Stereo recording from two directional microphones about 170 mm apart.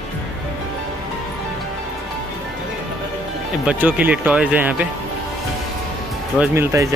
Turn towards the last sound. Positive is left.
turn(degrees=-15)  # may be behind; listen again after turning